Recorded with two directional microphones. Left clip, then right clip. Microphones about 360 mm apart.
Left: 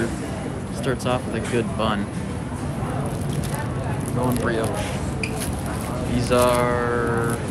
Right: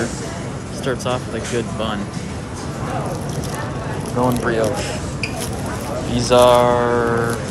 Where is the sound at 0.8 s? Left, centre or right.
Centre.